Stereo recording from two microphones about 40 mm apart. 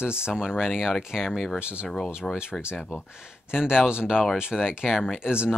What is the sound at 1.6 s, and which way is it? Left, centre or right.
Speech, right.